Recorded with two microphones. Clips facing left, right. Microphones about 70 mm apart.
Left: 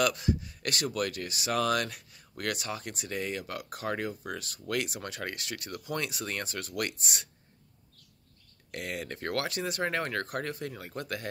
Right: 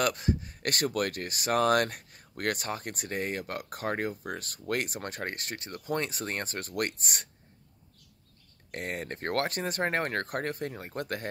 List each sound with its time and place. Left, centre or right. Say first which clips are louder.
0.0 s speech: even; right
8.7 s speech: right 1 dB; right